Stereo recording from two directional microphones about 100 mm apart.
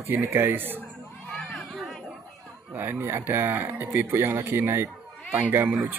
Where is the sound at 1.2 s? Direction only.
5° left (ahead or behind).